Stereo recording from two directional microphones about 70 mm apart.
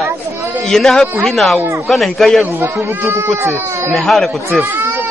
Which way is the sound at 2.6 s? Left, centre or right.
Right.